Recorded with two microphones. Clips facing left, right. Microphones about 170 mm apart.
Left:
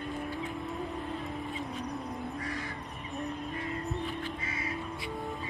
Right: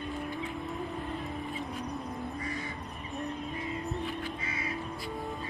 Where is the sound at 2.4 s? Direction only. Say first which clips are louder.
Even; 85° left.